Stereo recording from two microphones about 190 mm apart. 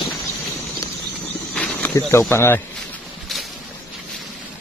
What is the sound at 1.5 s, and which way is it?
Insect, 10° left (ahead or behind).